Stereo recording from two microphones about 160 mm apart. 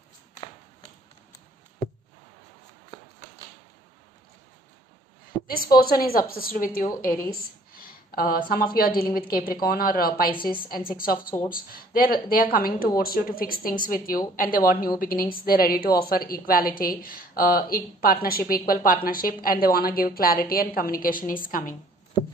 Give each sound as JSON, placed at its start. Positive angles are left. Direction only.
{"t": 5.6, "sound": "speech", "side_deg": 70}